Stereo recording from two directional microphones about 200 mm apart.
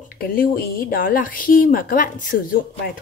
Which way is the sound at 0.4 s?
45° left (ahead or behind).